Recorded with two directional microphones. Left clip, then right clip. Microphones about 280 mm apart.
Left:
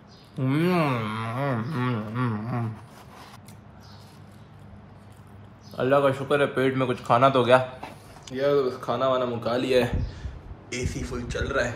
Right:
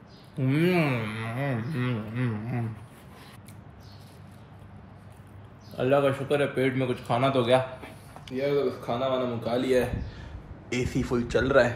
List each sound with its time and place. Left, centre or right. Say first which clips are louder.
0.4 s a sound: left 1 dB; centre
5.8 s a man's voice: left 2 dB; centre
10.7 s a man's voice: right 4 dB; centre